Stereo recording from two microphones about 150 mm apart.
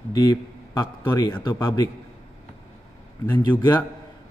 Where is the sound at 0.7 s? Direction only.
20° left (ahead or behind).